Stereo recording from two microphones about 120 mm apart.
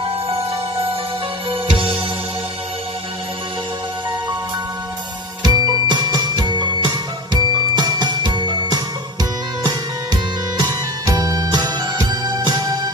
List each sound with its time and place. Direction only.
1.5 s music: 50° right (ahead or behind)
5.4 s music: 35° right (ahead or behind)